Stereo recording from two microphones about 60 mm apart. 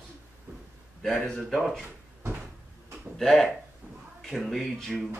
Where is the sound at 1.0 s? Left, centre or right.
Centre.